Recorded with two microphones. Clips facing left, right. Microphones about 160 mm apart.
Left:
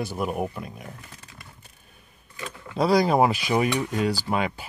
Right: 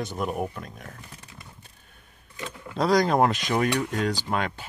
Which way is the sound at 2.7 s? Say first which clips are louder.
Left 1 dB; 5° left (ahead or behind).